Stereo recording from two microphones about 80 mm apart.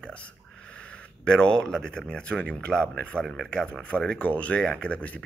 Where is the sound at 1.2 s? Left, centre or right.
Centre.